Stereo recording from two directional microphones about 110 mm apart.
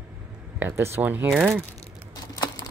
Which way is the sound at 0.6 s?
20° right (ahead or behind).